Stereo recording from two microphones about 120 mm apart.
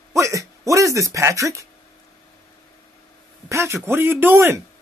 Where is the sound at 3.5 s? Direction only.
25° right (ahead or behind).